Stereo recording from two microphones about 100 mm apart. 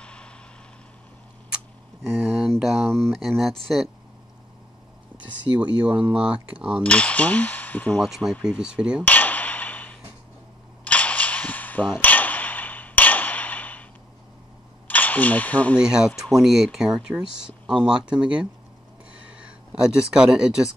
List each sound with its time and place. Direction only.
0.0 s vehicle: 10° left (ahead or behind)
2.0 s a sound: centre (ahead or behind)
2.6 s speech: centre (ahead or behind)
6.1 s speech: 10° right (ahead or behind)
6.8 s speech: 10° left (ahead or behind)
8.0 s speech: centre (ahead or behind)
9.0 s a sound: 15° left (ahead or behind)
14.9 s speech: 15° left (ahead or behind)
15.8 s speech: 5° right (ahead or behind)
19.7 s speech: 5° right (ahead or behind)